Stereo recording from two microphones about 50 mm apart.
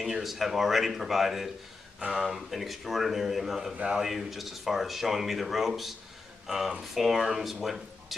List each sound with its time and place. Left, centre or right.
0.0 s speech: centre
3.7 s speech: right
4.0 s speech: centre